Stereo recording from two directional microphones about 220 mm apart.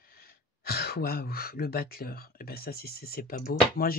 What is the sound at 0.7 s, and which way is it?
Speech, 45° left (ahead or behind).